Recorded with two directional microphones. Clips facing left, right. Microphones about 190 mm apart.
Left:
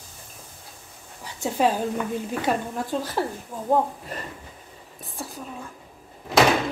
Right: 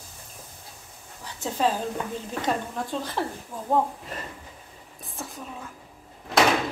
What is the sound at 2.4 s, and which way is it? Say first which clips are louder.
Speech: even; 10° left (ahead or behind).